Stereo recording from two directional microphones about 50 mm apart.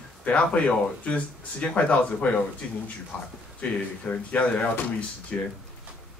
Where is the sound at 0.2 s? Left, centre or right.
Left.